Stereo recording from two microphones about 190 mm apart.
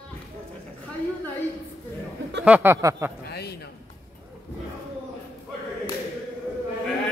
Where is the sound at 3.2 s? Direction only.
60° left (ahead or behind).